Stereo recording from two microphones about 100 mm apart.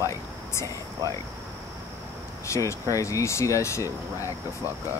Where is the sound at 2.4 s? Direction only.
30° left (ahead or behind).